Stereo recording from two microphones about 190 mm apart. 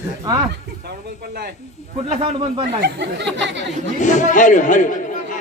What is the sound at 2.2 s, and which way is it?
Speech, 30° right (ahead or behind).